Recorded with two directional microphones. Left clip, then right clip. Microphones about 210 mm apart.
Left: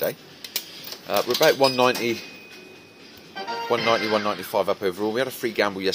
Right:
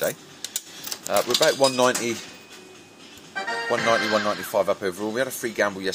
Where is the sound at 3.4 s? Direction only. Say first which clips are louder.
Right 2 dB; 25° right (ahead or behind).